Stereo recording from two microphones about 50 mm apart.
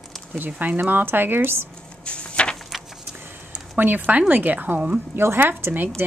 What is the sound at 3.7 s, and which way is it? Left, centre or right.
A woman's voice, right.